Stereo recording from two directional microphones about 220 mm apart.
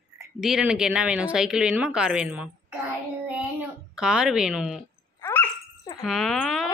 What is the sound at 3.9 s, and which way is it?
Speech, 5° right (ahead or behind).